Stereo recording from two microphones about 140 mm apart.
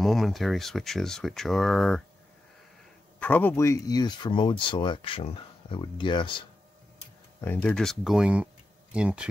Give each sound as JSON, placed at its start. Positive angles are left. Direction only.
{"t": 0.0, "sound": "speech", "side_deg": 0}
{"t": 3.2, "sound": "speech", "side_deg": 10}
{"t": 7.4, "sound": "speech", "side_deg": 10}